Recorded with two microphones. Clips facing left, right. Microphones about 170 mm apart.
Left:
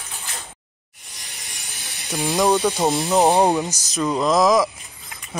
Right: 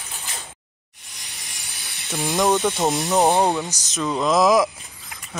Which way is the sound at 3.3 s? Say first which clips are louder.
Left 2 dB; 15° left (ahead or behind).